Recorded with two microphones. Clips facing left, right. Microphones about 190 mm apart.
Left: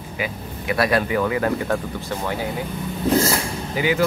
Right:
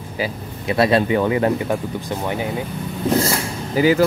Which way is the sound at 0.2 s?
25° right (ahead or behind).